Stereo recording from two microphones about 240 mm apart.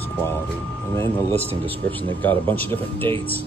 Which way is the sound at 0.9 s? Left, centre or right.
Centre.